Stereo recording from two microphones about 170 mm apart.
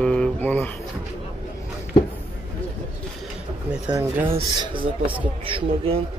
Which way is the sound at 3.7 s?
10° right (ahead or behind).